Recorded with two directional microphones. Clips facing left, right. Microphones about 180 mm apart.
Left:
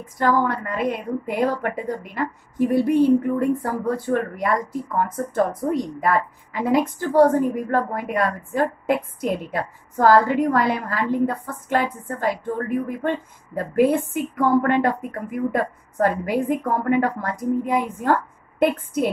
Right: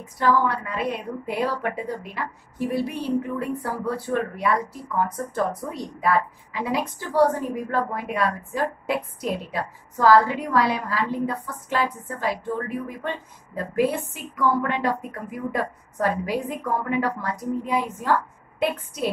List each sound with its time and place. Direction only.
0.2 s a woman's voice: 50° left (ahead or behind)